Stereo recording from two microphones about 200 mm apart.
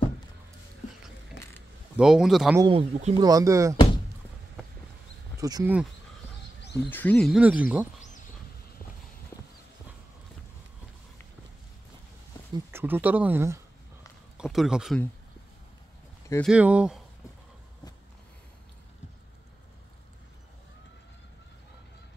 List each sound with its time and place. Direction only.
1.4 s wild animals: 65° left (ahead or behind)
2.0 s speech: 5° right (ahead or behind)
2.6 s speech: 30° right (ahead or behind)
3.2 s speech: 15° right (ahead or behind)
5.4 s speech: 15° right (ahead or behind)
6.8 s speech: 10° left (ahead or behind); by 7.9 s 5° right (ahead or behind)
12.5 s speech: 10° right (ahead or behind)
16.4 s speech: 5° right (ahead or behind)